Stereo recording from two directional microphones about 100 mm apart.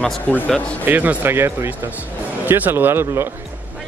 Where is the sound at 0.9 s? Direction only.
20° right (ahead or behind).